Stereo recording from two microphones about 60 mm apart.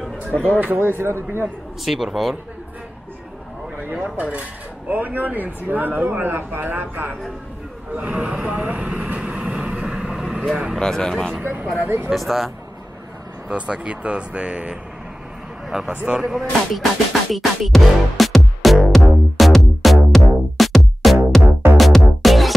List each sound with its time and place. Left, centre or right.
0.3 s speech: left
0.6 s speech: right
1.9 s speech: centre
4.0 s speech: right
7.9 s vehicle: centre
10.5 s speech: centre
10.8 s speech: centre
11.4 s speech: right
12.1 s speech: centre
13.5 s speech: centre
15.9 s speech: centre
16.2 s speech: centre
17.3 s music: centre